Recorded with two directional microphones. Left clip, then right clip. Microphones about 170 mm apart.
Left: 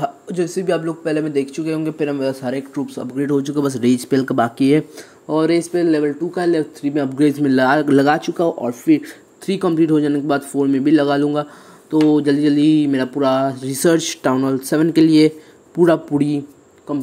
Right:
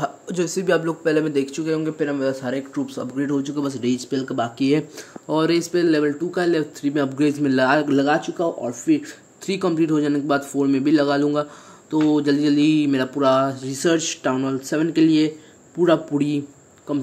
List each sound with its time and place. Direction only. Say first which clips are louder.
0.0 s speech: left 3 dB; centre (ahead or behind)
3.3 s speech: left 8 dB; 25° left (ahead or behind)
5.3 s speech: left 3 dB; 5° left (ahead or behind)
7.2 s speech: left 5 dB; 15° left (ahead or behind)
13.7 s speech: left 4 dB; 35° left (ahead or behind)
16.2 s speech: left 3 dB; 15° left (ahead or behind)